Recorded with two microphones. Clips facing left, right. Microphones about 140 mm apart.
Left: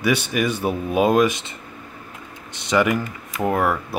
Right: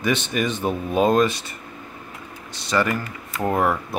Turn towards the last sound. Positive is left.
turn(degrees=0)  # may be behind; listen again after turning